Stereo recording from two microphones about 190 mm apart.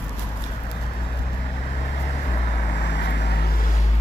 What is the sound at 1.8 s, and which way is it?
Vehicle, 50° left (ahead or behind).